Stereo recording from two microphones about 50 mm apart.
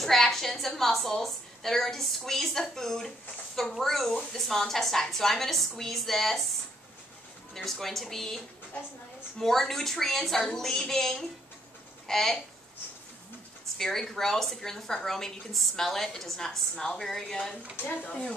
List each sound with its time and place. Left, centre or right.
0.0 s a woman's voice: centre
7.5 s a woman's voice: centre
9.4 s a woman's voice: centre
13.7 s a woman's voice: centre
17.8 s speech: left